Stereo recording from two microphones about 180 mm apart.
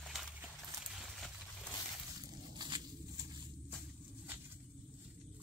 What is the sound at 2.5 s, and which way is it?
Walk, 25° right (ahead or behind).